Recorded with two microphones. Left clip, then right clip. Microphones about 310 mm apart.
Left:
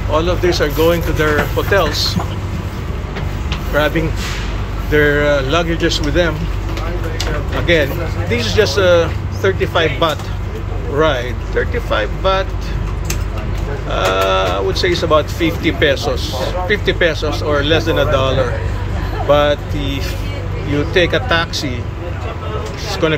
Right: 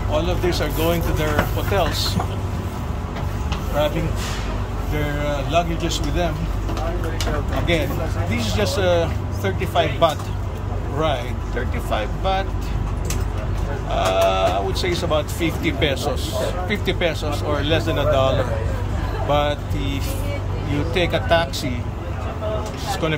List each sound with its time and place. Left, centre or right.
0.1 s speech: centre
4.9 s speech: centre
7.7 s speech: centre
13.9 s speech: centre
22.8 s a sound: centre